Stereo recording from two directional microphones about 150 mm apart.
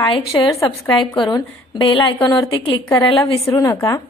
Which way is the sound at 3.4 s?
20° left (ahead or behind).